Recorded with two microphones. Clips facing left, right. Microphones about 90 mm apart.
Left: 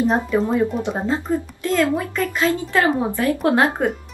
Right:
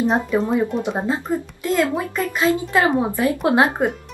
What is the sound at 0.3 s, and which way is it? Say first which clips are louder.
A woman's voice: even; 20° right (ahead or behind).